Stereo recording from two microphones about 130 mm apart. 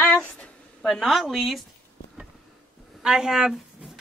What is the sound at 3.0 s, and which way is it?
Speech, 5° right (ahead or behind).